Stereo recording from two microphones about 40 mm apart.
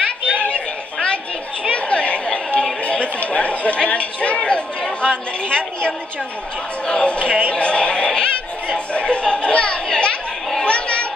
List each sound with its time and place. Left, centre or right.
0.3 s chatter: left
5.5 s a woman's voice: left
7.5 s a sound: left